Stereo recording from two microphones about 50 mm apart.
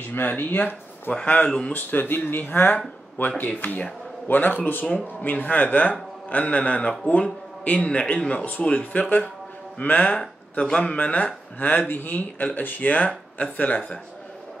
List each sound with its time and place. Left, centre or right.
0.1 s a man's voice: left
10.6 s a man's voice: centre